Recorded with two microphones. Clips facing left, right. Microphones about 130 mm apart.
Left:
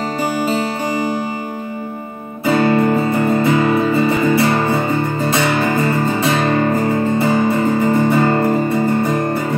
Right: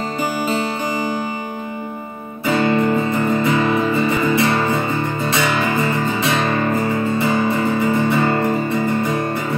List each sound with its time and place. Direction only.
2.5 s music: 40° left (ahead or behind)